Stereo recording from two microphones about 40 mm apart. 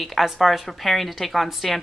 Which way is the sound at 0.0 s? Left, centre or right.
Centre.